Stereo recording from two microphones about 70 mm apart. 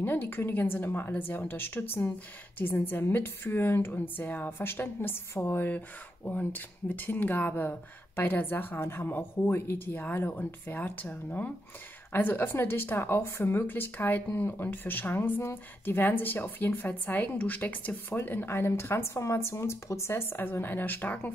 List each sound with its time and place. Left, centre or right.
0.0 s a woman's voice: left